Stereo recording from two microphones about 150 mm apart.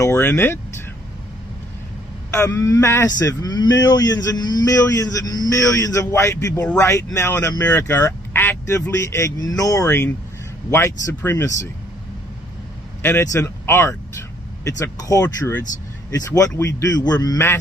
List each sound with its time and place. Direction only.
0.0 s speech: 15° left (ahead or behind)
2.3 s speech: 20° left (ahead or behind)
13.0 s speech: 15° left (ahead or behind)